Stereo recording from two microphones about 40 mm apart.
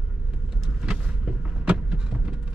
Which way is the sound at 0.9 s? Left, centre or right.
Right.